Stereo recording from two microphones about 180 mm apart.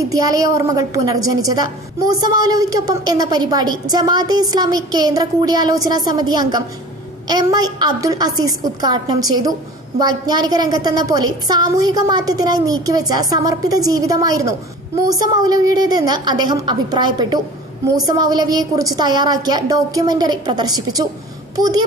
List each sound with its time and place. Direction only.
0.0 s speech: 20° right (ahead or behind)